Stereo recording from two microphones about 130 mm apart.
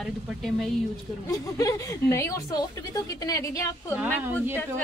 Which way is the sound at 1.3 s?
25° left (ahead or behind).